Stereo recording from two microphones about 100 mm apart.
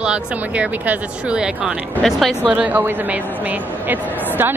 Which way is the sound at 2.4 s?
15° right (ahead or behind).